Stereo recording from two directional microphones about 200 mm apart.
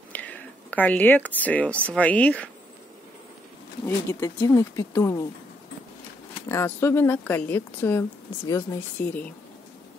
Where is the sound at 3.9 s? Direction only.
15° left (ahead or behind).